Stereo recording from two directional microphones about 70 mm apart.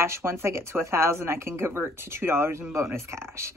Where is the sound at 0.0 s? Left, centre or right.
Right.